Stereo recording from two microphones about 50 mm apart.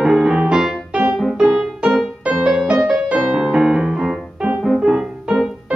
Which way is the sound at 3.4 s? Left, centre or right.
Centre.